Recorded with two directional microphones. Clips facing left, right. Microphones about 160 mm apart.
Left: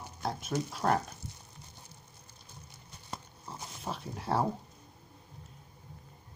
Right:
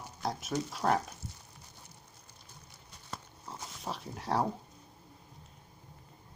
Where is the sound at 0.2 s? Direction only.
Centre (ahead or behind).